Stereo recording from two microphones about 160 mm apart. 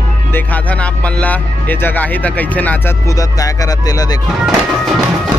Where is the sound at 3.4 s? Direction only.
25° left (ahead or behind).